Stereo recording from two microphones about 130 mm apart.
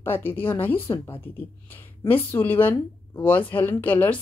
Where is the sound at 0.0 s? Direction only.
15° left (ahead or behind).